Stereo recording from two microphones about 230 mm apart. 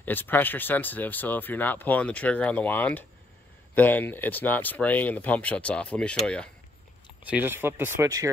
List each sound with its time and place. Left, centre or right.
0.0 s speech: centre
7.2 s speech: centre